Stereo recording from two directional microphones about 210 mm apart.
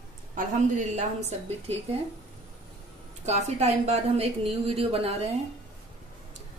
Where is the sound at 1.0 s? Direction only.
30° right (ahead or behind).